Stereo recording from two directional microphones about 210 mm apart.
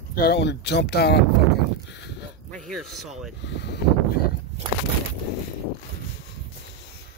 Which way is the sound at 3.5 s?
55° left (ahead or behind).